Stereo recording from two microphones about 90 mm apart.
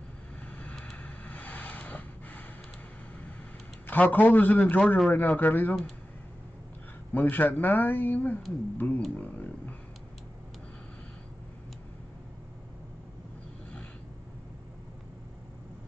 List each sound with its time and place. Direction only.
0.5 s vehicle: 15° left (ahead or behind)
3.8 s a man's voice: 20° left (ahead or behind)
7.2 s a man's voice: 20° left (ahead or behind)